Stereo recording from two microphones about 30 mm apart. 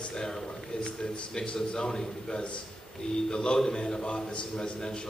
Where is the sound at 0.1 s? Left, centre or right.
Left.